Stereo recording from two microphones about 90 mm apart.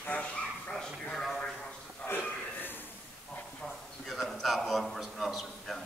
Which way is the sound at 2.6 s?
20° left (ahead or behind).